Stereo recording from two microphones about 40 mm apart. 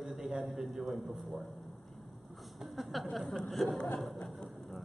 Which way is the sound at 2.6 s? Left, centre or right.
Centre.